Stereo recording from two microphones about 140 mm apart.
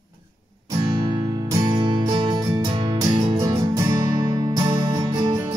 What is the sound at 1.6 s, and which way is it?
Music, 35° right (ahead or behind).